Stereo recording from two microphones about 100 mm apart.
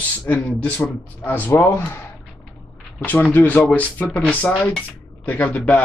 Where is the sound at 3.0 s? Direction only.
15° left (ahead or behind).